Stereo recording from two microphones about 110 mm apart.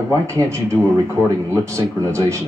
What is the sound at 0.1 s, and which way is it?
A man's voice, 25° right (ahead or behind).